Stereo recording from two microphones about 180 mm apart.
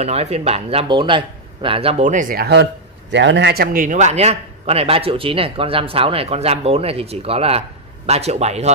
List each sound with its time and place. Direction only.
0.0 s speech: 35° right (ahead or behind)